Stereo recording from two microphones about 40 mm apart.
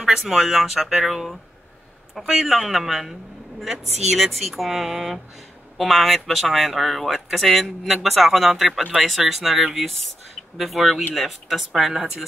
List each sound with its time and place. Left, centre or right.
0.0 s speech: centre
2.4 s speech: centre